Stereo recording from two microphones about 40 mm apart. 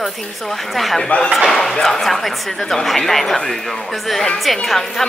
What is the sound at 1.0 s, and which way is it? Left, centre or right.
Speech, left.